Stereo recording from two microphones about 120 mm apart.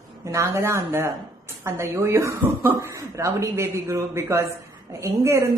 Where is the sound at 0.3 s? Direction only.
25° right (ahead or behind).